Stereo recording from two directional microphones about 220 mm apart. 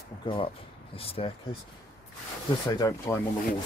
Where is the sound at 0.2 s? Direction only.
20° left (ahead or behind).